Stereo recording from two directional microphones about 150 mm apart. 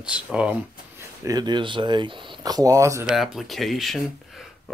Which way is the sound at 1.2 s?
25° right (ahead or behind).